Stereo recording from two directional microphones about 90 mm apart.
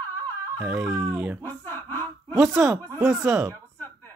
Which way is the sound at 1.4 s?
25° left (ahead or behind).